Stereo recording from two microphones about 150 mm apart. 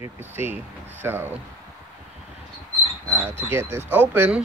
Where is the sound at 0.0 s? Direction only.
15° right (ahead or behind).